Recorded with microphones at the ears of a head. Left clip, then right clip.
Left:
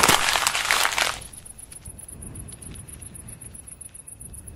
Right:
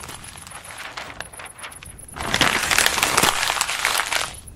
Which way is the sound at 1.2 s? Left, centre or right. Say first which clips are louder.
Right 12 dB; right.